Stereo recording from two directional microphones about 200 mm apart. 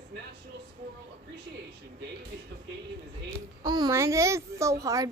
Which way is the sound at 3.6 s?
20° right (ahead or behind).